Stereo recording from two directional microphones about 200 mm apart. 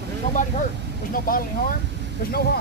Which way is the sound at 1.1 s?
45° left (ahead or behind).